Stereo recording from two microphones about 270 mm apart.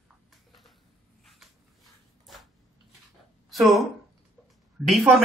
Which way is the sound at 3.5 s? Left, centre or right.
Centre.